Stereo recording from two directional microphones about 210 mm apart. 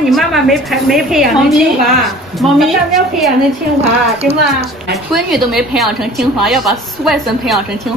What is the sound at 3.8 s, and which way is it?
Speech, 30° right (ahead or behind).